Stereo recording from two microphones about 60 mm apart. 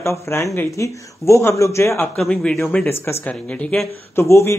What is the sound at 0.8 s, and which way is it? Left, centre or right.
Speech, left.